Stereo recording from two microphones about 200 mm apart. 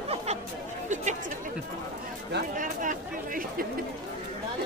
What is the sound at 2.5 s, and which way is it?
Chatter, 40° right (ahead or behind).